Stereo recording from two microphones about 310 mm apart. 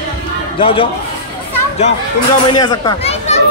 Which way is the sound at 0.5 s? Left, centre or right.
Centre.